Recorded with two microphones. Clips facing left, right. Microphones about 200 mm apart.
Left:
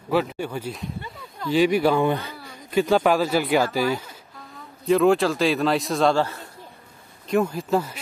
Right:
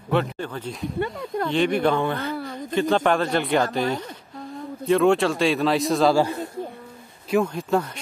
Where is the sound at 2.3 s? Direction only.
55° right (ahead or behind).